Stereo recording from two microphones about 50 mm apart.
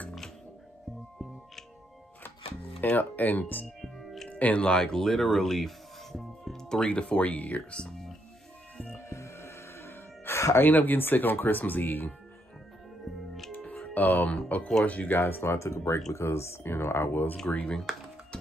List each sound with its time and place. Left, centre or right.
3.0 s speech: left
3.6 s music: centre
4.3 s speech: left
5.0 s speech: centre
6.5 s music: centre
6.9 s speech: left
7.7 s speech: centre
8.9 s music: left
10.6 s speech: left
13.9 s speech: left
15.1 s speech: left
17.7 s a sound: centre